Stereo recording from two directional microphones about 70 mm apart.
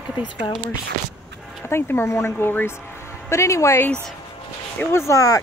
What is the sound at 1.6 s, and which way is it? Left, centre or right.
Speech, left.